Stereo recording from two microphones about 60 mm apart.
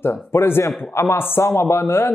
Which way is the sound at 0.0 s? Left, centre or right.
Left.